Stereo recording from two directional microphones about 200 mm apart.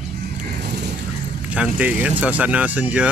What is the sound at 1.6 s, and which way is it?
Speech, 5° right (ahead or behind).